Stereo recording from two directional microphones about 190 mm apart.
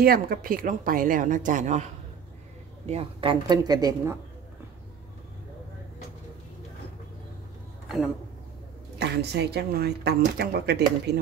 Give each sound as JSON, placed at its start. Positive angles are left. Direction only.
{"t": 0.0, "sound": "a woman's voice", "side_deg": -50}
{"t": 2.9, "sound": "speech", "side_deg": -30}
{"t": 8.9, "sound": "speech", "side_deg": -60}